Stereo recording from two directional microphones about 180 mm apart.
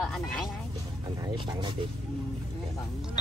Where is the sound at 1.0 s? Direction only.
25° right (ahead or behind).